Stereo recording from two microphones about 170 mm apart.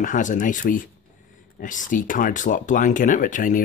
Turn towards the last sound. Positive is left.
turn(degrees=50)  # may be behind; listen again after turning